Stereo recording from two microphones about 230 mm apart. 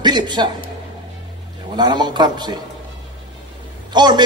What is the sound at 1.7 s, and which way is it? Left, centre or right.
Speech, centre.